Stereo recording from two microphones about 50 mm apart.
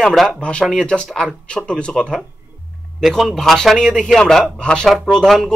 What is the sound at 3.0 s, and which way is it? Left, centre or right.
Speech, centre.